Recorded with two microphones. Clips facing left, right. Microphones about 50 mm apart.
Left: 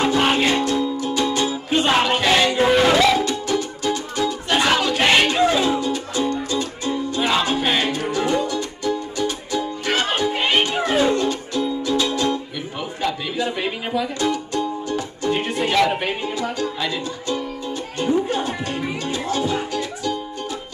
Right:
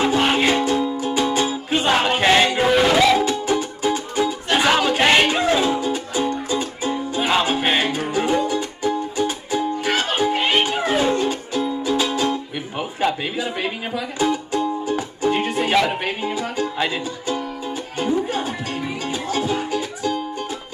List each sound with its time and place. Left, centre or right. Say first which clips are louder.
0.3 s music: right 1 dB; centre
2.0 s music: right 1 dB; right
2.6 s music: even; centre
3.3 s music: right 2 dB; centre
4.7 s a sound: right 2 dB; right
5.0 s music: left 1 dB; centre
17.9 s music: left 1 dB; centre